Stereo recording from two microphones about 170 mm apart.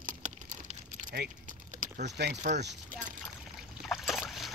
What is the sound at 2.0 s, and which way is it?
Speech, 75° right (ahead or behind).